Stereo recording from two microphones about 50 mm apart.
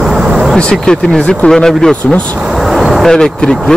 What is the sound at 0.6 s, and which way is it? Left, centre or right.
Speech, centre.